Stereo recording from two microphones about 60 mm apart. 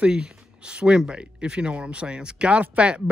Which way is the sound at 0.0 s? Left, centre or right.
Centre.